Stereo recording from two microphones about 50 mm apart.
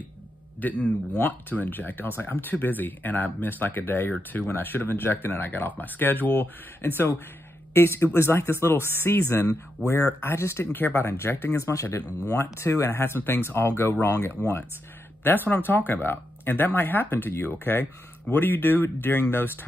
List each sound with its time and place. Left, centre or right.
0.6 s speech: left
10.7 s speech: left
11.6 s speech: left
12.0 s speech: right
12.4 s speech: left
12.9 s speech: left
15.2 s speech: left